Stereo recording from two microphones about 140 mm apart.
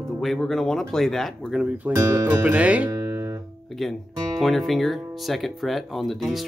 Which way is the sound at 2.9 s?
20° right (ahead or behind).